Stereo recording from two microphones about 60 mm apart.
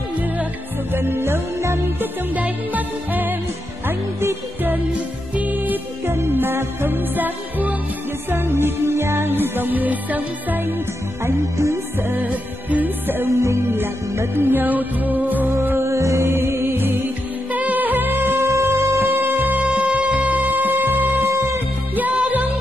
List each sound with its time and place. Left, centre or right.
0.9 s music: right
2.3 s music: right
5.3 s music: right
6.0 s music: right
8.3 s music: right
11.5 s music: right
12.0 s music: right
13.3 s music: right
15.8 s music: right